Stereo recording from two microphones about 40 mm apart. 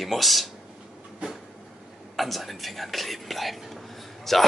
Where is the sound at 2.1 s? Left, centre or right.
Centre.